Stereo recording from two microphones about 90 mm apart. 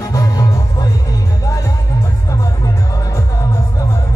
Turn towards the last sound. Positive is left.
turn(degrees=35)  # may be behind; listen again after turning